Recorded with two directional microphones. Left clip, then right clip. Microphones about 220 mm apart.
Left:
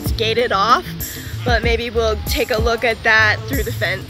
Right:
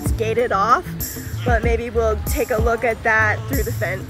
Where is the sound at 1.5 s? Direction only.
10° left (ahead or behind).